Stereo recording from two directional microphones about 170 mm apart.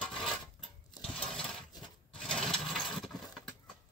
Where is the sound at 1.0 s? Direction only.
5° left (ahead or behind).